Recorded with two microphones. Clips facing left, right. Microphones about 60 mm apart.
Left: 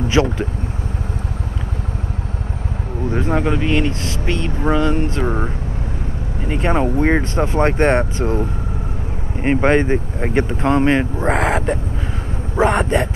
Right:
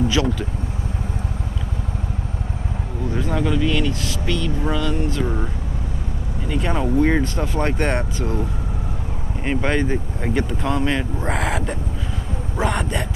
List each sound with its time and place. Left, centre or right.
0.1 s vehicle: left
3.1 s speech: left